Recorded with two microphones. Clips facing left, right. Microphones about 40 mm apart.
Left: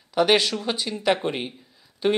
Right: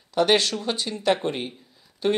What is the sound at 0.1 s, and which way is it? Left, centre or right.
Speech, centre.